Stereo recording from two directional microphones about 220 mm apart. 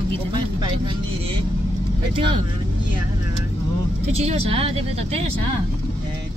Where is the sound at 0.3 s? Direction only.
20° right (ahead or behind).